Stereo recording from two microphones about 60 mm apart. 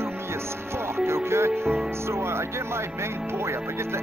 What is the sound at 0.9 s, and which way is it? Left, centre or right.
Speech, right.